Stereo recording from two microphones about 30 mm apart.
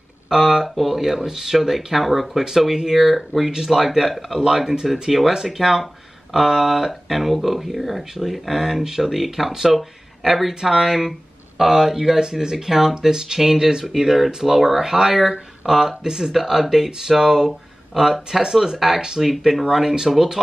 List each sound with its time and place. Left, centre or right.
0.3 s a sound: centre
0.7 s speech: centre
3.5 s speech: centre
6.9 s speech: centre
10.5 s speech: centre
11.0 s a sound: centre
11.7 s speech: centre